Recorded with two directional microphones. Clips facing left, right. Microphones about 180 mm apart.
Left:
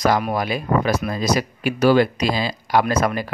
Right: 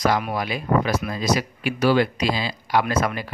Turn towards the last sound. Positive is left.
turn(degrees=45)  # may be behind; listen again after turning